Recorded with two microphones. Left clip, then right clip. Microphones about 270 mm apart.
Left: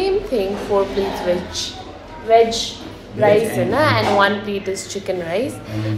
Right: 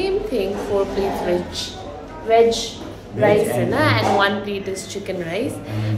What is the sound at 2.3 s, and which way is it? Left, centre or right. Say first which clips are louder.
A woman's voice: left 1 dB; centre.